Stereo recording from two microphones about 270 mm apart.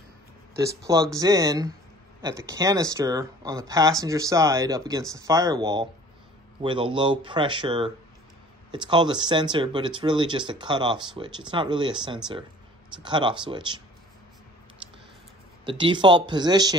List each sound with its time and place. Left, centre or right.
0.6 s speech: centre
15.8 s speech: centre